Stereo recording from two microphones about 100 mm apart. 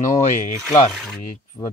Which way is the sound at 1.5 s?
45° left (ahead or behind).